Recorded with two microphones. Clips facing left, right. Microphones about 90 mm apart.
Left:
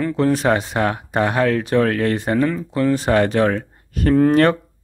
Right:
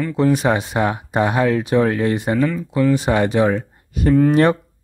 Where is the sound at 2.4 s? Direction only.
Centre (ahead or behind).